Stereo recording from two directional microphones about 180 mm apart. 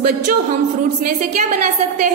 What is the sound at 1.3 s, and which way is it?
Speech, 40° right (ahead or behind).